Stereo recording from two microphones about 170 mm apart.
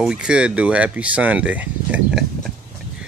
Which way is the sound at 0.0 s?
5° right (ahead or behind).